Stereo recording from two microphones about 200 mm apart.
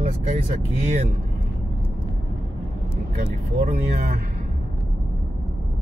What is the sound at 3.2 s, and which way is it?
Speech, 35° right (ahead or behind).